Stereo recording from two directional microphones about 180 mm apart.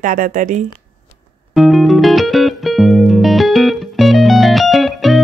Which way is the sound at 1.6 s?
Centre (ahead or behind).